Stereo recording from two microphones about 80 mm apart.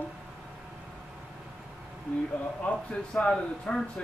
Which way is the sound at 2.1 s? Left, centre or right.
Centre.